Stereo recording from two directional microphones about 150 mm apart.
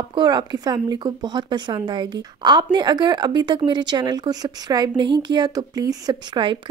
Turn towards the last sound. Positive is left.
turn(degrees=-30)  # may be behind; listen again after turning